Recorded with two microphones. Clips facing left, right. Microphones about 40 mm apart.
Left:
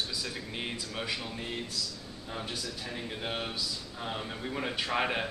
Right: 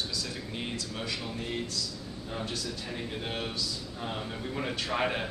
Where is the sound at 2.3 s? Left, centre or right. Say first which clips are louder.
Right 2 dB; centre.